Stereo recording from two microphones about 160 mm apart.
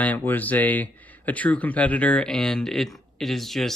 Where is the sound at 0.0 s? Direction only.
10° left (ahead or behind).